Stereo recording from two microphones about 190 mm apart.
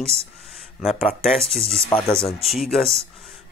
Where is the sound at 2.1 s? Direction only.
30° left (ahead or behind).